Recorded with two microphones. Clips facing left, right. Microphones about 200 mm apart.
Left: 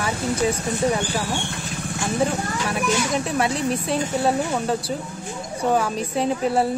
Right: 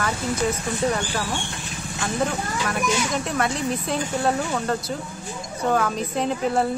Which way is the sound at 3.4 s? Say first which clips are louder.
Left 1 dB; 5° left (ahead or behind).